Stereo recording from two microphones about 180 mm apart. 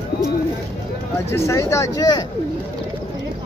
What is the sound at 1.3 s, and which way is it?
Speech, 15° left (ahead or behind).